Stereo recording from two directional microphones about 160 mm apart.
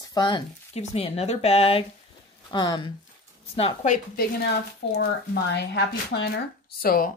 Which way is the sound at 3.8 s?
65° left (ahead or behind).